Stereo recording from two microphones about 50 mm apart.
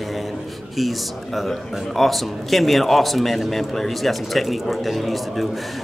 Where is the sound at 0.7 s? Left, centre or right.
Centre.